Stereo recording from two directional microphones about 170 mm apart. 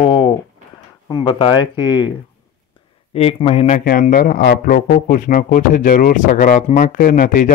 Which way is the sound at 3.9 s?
55° left (ahead or behind).